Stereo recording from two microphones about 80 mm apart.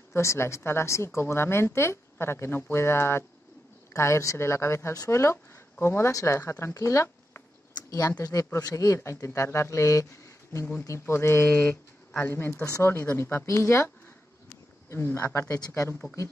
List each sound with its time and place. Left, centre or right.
0.1 s a woman's voice: left
8.2 s a woman's voice: left